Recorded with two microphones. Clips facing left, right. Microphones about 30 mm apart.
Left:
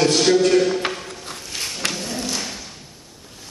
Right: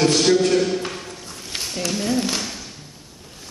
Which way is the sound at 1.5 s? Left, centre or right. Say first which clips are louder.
Even; right.